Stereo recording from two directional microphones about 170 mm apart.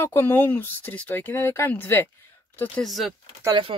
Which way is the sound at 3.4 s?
25° right (ahead or behind).